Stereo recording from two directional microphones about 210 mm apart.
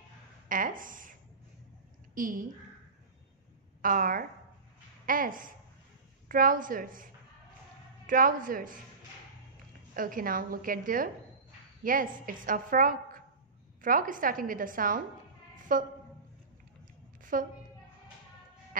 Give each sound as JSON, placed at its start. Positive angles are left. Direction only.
{"t": 0.5, "sound": "speech", "side_deg": -40}
{"t": 2.1, "sound": "a woman's voice", "side_deg": -40}
{"t": 3.8, "sound": "a woman's voice", "side_deg": -40}
{"t": 8.1, "sound": "a woman's voice", "side_deg": -40}
{"t": 9.9, "sound": "a woman's voice", "side_deg": -40}
{"t": 15.5, "sound": "a sound", "side_deg": -40}
{"t": 17.2, "sound": "a sound", "side_deg": -40}